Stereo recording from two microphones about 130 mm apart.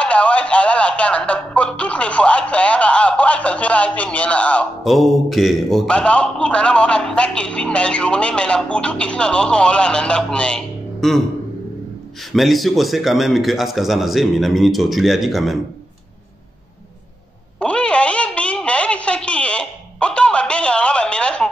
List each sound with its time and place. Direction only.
0.0 s music: 10° left (ahead or behind)
4.8 s a man's voice: centre (ahead or behind)
12.3 s speech: centre (ahead or behind)
17.6 s a sound: 10° left (ahead or behind)